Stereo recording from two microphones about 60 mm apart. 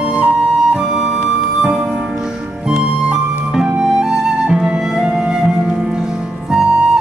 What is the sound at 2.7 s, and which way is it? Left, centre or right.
Music, centre.